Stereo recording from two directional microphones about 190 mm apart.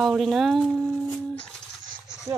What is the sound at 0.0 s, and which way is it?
Speech, centre (ahead or behind).